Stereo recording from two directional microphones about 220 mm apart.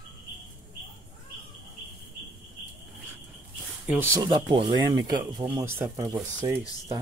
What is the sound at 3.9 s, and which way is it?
Speech, 10° right (ahead or behind).